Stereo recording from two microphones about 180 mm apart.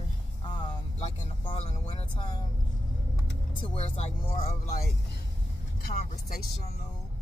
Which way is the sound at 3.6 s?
30° left (ahead or behind).